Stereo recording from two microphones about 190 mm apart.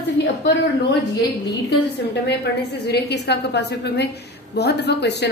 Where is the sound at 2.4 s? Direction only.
60° left (ahead or behind).